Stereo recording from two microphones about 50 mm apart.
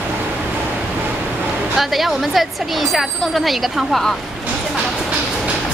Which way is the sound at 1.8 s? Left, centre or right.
Centre.